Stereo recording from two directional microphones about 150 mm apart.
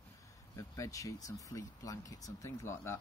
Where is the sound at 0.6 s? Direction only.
20° left (ahead or behind).